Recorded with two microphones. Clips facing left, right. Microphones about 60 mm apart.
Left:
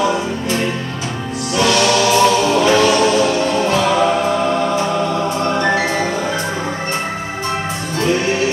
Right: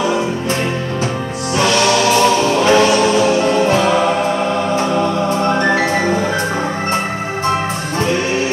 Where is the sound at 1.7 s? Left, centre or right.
Centre.